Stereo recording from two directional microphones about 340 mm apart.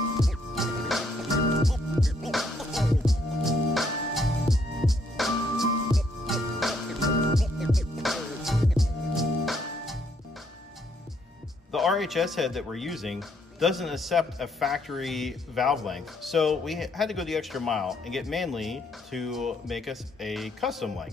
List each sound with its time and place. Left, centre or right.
0.2 s music: centre
11.7 s speech: centre